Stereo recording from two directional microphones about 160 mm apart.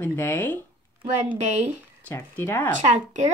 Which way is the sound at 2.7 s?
50° right (ahead or behind).